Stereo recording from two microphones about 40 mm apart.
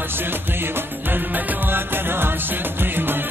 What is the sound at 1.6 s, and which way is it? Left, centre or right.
Music, right.